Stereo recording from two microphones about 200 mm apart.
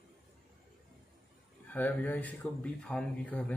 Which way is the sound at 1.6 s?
10° left (ahead or behind).